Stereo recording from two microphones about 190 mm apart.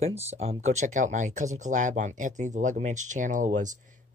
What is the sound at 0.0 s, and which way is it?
Speech, 35° right (ahead or behind).